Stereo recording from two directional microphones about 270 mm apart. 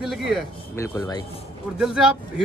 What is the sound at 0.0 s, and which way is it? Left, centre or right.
Speech, centre.